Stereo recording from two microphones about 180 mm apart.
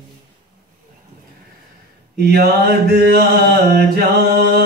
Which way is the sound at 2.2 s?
60° right (ahead or behind).